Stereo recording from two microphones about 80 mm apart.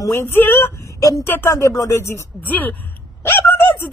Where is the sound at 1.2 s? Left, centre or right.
Left.